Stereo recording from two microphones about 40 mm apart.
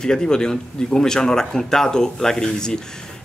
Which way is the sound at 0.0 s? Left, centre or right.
Centre.